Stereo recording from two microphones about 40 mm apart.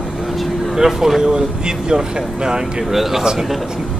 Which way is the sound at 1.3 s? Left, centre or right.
Right.